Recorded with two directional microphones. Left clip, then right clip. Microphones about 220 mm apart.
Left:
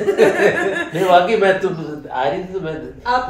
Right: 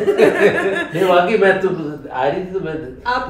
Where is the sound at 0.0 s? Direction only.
5° left (ahead or behind).